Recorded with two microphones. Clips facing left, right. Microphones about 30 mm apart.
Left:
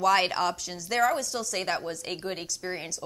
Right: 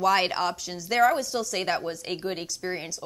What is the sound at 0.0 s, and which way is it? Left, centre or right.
A woman's voice, centre.